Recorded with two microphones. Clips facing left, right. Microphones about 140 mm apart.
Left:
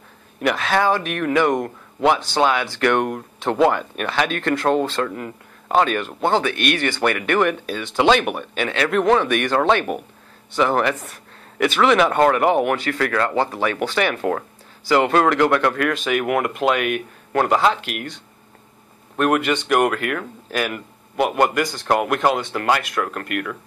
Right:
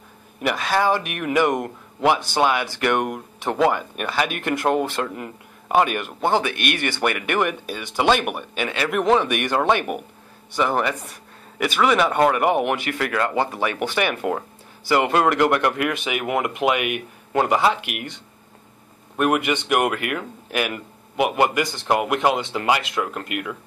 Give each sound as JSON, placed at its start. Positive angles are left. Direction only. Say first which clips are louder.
{"t": 0.4, "sound": "speech", "louder": "left 2 dB", "side_deg": -5}
{"t": 6.5, "sound": "speech", "louder": "left 4 dB", "side_deg": 45}
{"t": 6.8, "sound": "speech", "louder": "left 2 dB", "side_deg": -15}